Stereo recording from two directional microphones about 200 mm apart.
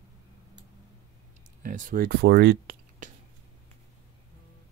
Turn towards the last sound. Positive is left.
turn(degrees=-40)  # may be behind; listen again after turning